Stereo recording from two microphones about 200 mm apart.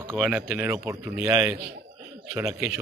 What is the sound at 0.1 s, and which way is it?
A man's voice, 5° right (ahead or behind).